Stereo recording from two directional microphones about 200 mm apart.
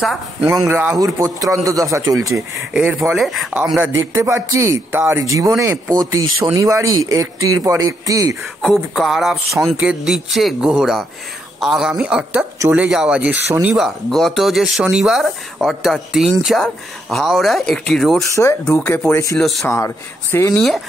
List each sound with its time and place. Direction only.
0.0 s speech: centre (ahead or behind)
0.5 s speech: 15° right (ahead or behind)
4.1 s speech: 15° right (ahead or behind)
8.6 s speech: centre (ahead or behind)
18.2 s speech: 15° left (ahead or behind)
19.3 s speech: centre (ahead or behind)
19.7 s speech: 10° left (ahead or behind)